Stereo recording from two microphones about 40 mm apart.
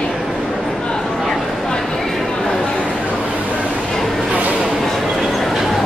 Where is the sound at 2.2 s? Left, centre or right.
Centre.